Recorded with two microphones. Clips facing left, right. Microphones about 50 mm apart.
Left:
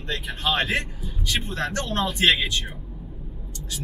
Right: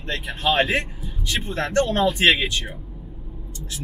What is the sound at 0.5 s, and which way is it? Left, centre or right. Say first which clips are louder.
Speech: right 4 dB; centre.